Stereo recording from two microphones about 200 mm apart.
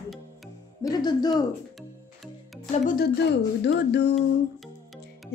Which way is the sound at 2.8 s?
50° left (ahead or behind).